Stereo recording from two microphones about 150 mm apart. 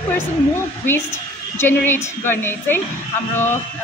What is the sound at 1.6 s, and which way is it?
A woman's voice, 15° left (ahead or behind).